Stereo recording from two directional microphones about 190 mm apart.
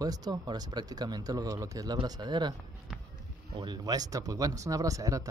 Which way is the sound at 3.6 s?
20° right (ahead or behind).